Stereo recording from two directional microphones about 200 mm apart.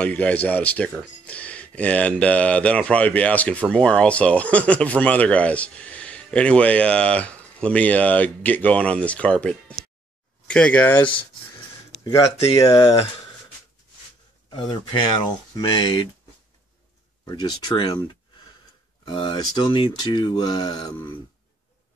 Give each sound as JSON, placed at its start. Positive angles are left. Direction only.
{"t": 0.0, "sound": "speech", "side_deg": 5}
{"t": 12.0, "sound": "speech", "side_deg": 20}
{"t": 14.5, "sound": "speech", "side_deg": 25}
{"t": 17.2, "sound": "speech", "side_deg": 20}